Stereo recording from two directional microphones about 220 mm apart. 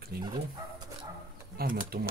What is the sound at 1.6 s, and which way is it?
Speech, 45° right (ahead or behind).